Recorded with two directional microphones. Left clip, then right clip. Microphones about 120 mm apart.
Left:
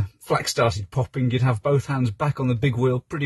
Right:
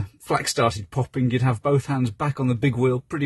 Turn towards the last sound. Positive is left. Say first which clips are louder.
# right 1 dB
turn(degrees=-45)  # may be behind; listen again after turning